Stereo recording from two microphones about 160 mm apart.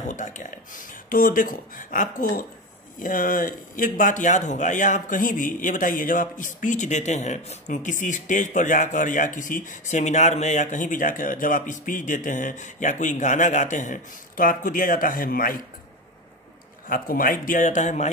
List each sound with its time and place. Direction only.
0.0 s speech: 50° left (ahead or behind)
16.9 s speech: 60° left (ahead or behind)